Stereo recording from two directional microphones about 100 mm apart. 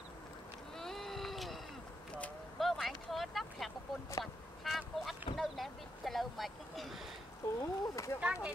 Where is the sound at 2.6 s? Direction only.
Centre (ahead or behind).